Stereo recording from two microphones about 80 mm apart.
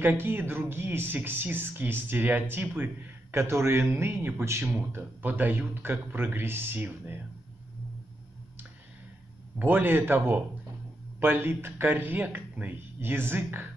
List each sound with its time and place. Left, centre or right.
0.0 s a man's voice: right
9.6 s speech: right